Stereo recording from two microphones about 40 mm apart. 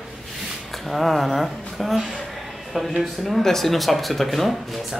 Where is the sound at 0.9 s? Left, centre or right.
Centre.